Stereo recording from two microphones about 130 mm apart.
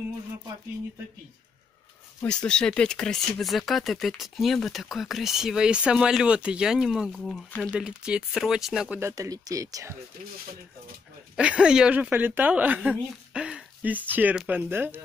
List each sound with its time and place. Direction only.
2.2 s speech: 5° left (ahead or behind)
9.1 s speech: 25° right (ahead or behind)
11.3 s speech: 5° right (ahead or behind)